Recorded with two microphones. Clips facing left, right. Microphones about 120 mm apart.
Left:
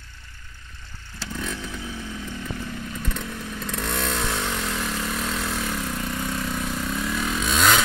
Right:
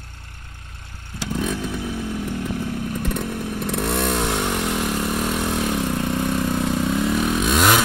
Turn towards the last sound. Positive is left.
turn(degrees=-10)  # may be behind; listen again after turning